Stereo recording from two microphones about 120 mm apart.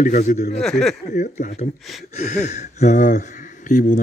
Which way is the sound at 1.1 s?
90° left.